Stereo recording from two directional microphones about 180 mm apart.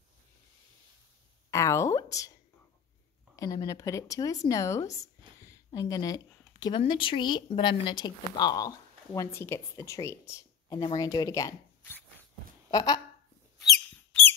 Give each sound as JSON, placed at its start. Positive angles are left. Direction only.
{"t": 1.5, "sound": "speech", "side_deg": 15}
{"t": 3.3, "sound": "a woman's voice", "side_deg": 20}
{"t": 13.8, "sound": "mouse", "side_deg": 10}